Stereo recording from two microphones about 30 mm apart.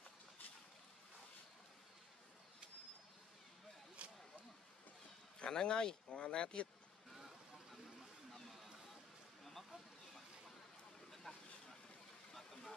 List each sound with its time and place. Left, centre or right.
4.0 s a sound: right
5.4 s speech: left
8.3 s music: centre
9.4 s a sound: centre
11.3 s vehicle: left
12.3 s vehicle: centre